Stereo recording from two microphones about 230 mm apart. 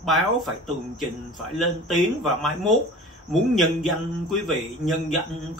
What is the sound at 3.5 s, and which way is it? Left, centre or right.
Speech, centre.